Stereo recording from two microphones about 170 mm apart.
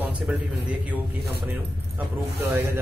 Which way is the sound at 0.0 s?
10° right (ahead or behind).